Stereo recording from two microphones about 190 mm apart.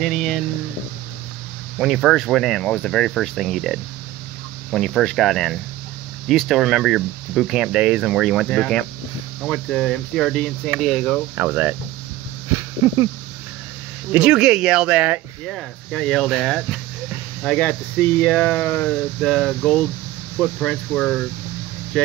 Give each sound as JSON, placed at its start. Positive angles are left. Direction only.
{"t": 0.0, "sound": "speech", "side_deg": 0}
{"t": 1.8, "sound": "speech", "side_deg": -5}
{"t": 11.3, "sound": "speech", "side_deg": -10}
{"t": 12.8, "sound": "speech", "side_deg": -15}
{"t": 14.1, "sound": "speech", "side_deg": -5}
{"t": 21.9, "sound": "vehicle", "side_deg": 5}